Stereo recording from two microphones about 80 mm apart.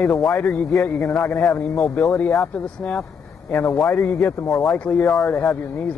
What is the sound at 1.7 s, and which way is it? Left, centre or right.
Speech, left.